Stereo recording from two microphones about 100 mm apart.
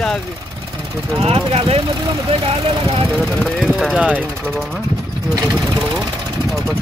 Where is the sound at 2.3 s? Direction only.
90° right.